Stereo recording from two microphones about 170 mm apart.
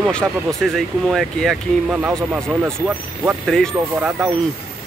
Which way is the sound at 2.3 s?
10° right (ahead or behind).